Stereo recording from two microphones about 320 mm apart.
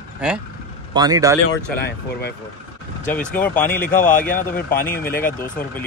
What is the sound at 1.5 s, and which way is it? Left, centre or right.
Speech, left.